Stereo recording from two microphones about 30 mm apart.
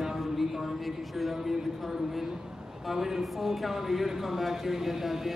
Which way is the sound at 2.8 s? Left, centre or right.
Centre.